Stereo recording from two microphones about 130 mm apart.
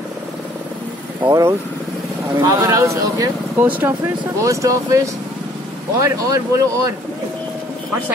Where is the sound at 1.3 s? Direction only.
25° right (ahead or behind).